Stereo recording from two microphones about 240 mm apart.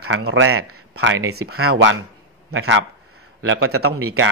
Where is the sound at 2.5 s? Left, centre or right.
Right.